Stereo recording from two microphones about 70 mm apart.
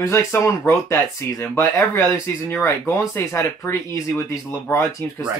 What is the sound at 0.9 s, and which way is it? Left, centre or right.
Speech, left.